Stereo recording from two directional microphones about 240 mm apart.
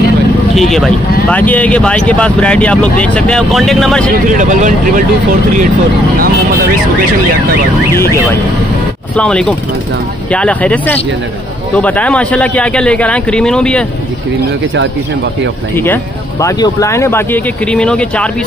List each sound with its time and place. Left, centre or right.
0.6 s speech: centre
4.3 s speech: right
6.1 s vehicle: right
7.9 s speech: centre
15.7 s speech: centre